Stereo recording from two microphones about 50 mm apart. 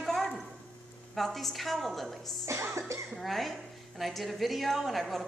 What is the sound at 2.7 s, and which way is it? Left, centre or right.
Speech, right.